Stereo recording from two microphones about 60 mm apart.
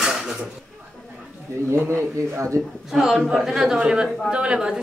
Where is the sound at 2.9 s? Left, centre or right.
Centre.